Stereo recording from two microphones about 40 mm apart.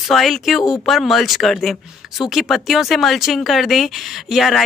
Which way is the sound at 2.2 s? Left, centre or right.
Centre.